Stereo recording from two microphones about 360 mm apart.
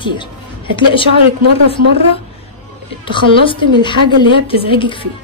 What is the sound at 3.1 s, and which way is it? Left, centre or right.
A woman's voice, centre.